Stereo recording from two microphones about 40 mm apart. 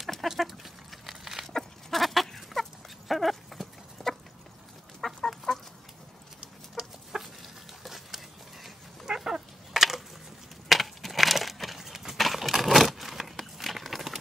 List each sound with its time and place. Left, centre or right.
0.2 s livestock: centre
1.0 s dog: centre
1.5 s goat: centre
5.0 s chicken: centre
6.8 s chicken: right
7.1 s chicken: centre
7.8 s a sound: centre
9.0 s dog: centre
9.8 s a sound: centre